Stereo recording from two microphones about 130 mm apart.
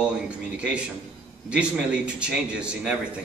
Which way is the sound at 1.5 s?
10° right (ahead or behind).